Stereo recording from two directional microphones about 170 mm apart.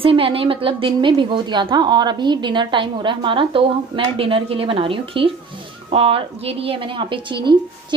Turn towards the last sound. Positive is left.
turn(degrees=-30)  # may be behind; listen again after turning